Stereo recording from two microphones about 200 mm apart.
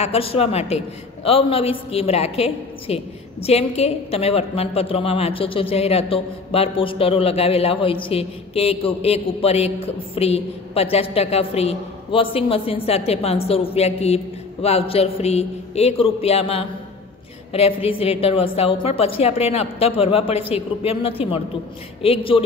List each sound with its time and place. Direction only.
0.0 s a man's voice: 30° left (ahead or behind)